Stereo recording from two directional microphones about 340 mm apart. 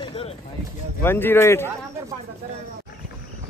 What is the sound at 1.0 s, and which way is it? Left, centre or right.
Speech, centre.